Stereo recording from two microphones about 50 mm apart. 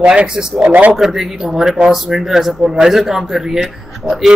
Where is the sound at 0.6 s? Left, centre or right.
Right.